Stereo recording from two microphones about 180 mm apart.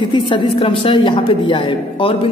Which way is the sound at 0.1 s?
25° left (ahead or behind).